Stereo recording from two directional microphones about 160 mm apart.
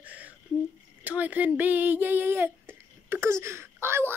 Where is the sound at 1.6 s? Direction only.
10° right (ahead or behind).